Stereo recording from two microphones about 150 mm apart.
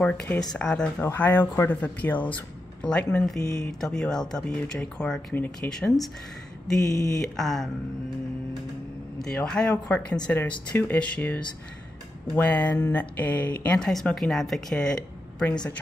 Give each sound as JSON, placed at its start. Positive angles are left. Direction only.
{"t": 0.0, "sound": "speech", "side_deg": 5}
{"t": 6.9, "sound": "speech", "side_deg": 25}
{"t": 7.2, "sound": "speech", "side_deg": 0}
{"t": 9.2, "sound": "speech", "side_deg": 5}